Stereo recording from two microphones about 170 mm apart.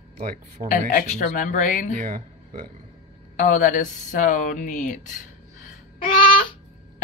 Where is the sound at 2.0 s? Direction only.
55° right (ahead or behind).